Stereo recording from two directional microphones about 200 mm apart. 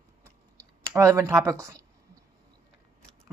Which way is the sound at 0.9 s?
15° right (ahead or behind).